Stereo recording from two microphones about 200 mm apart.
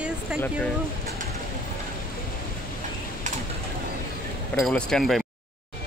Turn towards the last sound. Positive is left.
turn(degrees=0)  # may be behind; listen again after turning